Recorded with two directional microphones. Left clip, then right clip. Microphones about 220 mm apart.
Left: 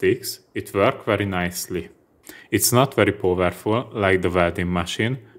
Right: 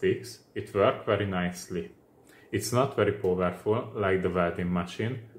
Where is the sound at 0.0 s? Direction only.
45° left (ahead or behind).